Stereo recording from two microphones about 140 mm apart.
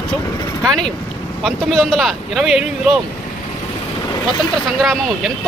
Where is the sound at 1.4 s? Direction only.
Centre (ahead or behind).